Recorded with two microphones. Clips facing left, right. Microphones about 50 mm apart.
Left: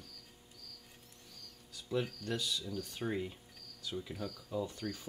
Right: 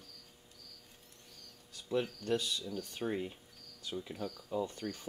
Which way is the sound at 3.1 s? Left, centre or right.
Centre.